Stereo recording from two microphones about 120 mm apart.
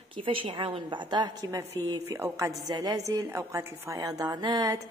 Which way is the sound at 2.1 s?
20° right (ahead or behind).